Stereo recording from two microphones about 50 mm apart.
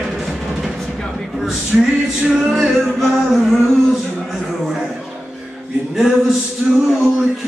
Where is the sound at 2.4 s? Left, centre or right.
Centre.